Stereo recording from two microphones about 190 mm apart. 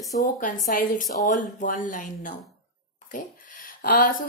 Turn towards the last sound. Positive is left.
turn(degrees=50)  # may be behind; listen again after turning